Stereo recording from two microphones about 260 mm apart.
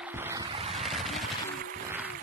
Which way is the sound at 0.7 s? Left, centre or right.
Centre.